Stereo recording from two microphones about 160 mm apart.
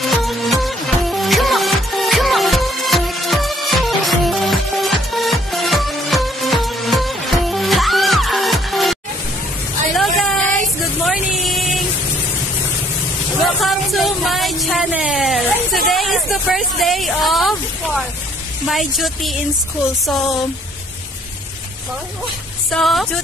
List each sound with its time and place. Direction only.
0.0 s music: centre (ahead or behind)
9.9 s a sound: centre (ahead or behind)
10.8 s vehicle: centre (ahead or behind)
13.4 s a sound: centre (ahead or behind)
18.7 s a woman's voice: centre (ahead or behind)
22.7 s a woman's voice: centre (ahead or behind)